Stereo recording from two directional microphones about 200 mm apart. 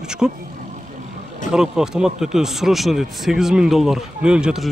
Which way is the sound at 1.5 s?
5° right (ahead or behind).